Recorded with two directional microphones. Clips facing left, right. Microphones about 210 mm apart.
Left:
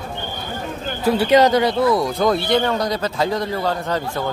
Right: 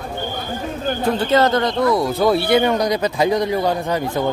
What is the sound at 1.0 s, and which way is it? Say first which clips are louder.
Speech: left 3 dB; 10° left (ahead or behind).